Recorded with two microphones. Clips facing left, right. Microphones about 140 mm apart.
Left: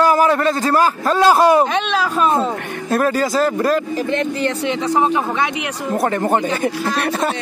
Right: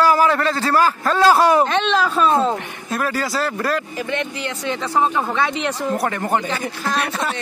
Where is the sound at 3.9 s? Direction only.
35° left (ahead or behind).